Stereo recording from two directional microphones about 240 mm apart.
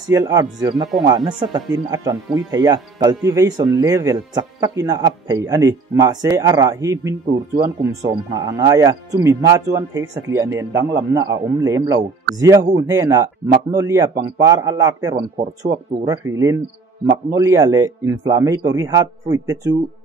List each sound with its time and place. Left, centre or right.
0.1 s speech: centre